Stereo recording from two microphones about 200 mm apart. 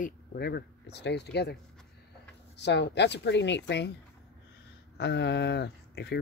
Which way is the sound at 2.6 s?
60° left (ahead or behind).